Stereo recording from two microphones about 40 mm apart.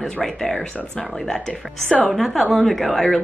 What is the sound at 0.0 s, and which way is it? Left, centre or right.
A woman's voice, centre.